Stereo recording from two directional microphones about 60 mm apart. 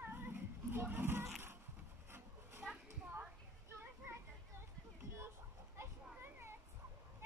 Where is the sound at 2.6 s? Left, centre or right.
Centre.